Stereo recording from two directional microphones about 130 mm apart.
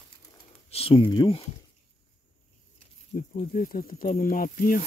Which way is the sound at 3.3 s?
90° left.